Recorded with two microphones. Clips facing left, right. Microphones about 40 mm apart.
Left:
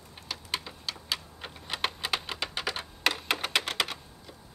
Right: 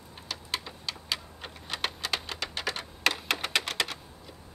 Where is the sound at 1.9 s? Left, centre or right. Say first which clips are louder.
Left 1 dB; centre.